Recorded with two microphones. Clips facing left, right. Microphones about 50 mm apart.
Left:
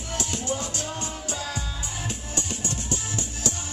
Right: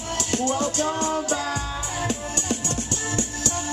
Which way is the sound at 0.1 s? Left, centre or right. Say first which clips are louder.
Right 5 dB; right.